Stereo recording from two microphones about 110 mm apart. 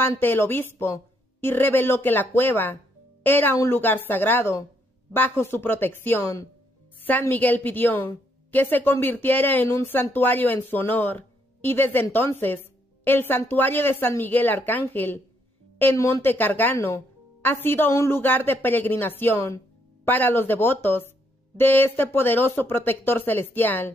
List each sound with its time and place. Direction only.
0.2 s a woman's voice: 20° left (ahead or behind)